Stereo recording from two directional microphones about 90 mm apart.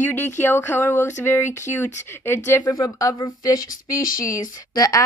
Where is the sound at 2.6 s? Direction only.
40° left (ahead or behind).